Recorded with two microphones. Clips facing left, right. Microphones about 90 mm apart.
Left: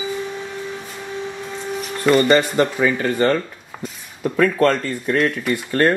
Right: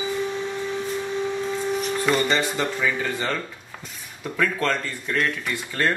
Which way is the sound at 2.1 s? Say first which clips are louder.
Left 8 dB; 55° left (ahead or behind).